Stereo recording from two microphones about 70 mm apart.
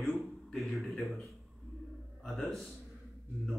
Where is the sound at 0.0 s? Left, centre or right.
Centre.